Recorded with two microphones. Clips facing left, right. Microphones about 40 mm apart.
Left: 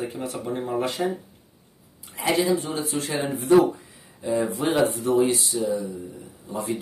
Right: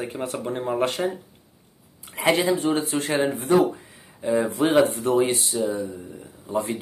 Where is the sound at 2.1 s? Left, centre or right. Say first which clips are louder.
Right 1 dB; right.